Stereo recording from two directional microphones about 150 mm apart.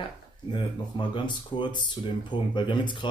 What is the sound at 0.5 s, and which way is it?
Speech, 30° left (ahead or behind).